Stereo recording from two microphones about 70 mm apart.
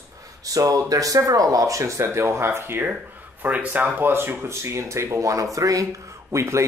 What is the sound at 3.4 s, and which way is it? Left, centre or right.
Speech, centre.